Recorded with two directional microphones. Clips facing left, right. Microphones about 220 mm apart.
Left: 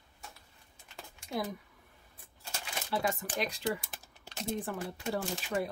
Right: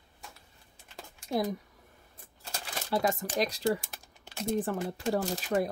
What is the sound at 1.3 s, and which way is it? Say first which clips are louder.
Speech: right 6 dB; 40° right (ahead or behind).